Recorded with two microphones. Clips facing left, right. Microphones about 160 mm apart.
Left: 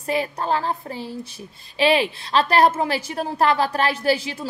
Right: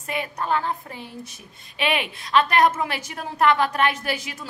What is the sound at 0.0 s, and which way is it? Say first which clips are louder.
A woman's voice: left 5 dB; 30° left (ahead or behind).